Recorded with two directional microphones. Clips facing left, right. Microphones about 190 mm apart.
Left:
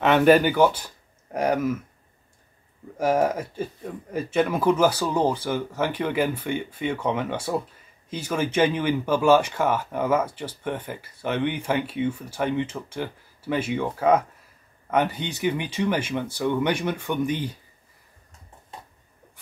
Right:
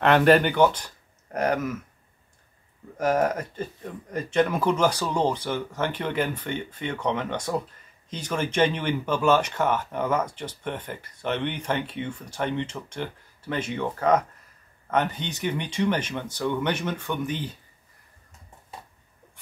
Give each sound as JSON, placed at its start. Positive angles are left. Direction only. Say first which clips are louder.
{"t": 0.0, "sound": "speech", "louder": "left 1 dB", "side_deg": 5}
{"t": 3.0, "sound": "speech", "louder": "left 1 dB", "side_deg": 10}